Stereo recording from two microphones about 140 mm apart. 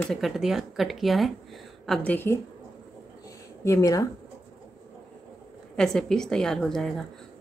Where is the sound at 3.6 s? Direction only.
25° left (ahead or behind).